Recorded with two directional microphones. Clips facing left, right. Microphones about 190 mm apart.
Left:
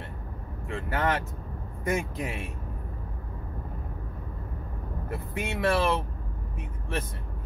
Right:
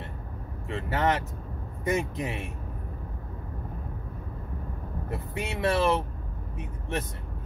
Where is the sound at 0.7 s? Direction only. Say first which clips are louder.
Right 2 dB; 20° right (ahead or behind).